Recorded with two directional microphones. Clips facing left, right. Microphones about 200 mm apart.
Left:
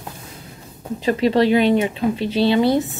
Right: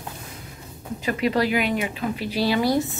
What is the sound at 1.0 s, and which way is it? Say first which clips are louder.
Speech: left 6 dB; 30° left (ahead or behind).